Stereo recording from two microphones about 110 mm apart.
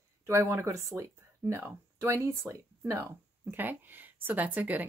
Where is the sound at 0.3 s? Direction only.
25° right (ahead or behind).